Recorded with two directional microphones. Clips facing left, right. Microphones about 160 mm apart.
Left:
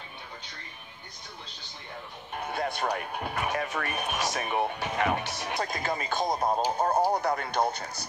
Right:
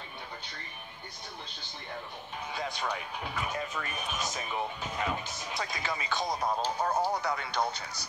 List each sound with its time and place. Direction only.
2.3 s speech: 55° left (ahead or behind)
3.4 s speech: 75° left (ahead or behind)
5.6 s speech: 50° left (ahead or behind)
6.9 s speech: 30° left (ahead or behind)
7.2 s speech: 50° left (ahead or behind)